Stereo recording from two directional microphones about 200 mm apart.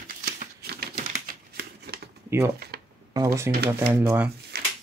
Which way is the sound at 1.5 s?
50° right (ahead or behind).